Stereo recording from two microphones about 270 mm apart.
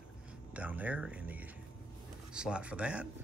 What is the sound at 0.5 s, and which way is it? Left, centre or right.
Speech, centre.